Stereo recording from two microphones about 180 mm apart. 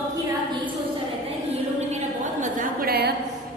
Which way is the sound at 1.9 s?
45° right (ahead or behind).